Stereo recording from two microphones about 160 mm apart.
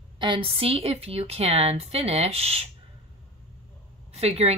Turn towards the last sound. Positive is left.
turn(degrees=-40)  # may be behind; listen again after turning